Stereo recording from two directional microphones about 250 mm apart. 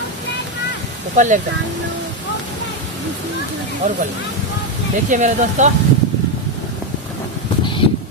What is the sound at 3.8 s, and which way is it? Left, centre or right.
Speech, right.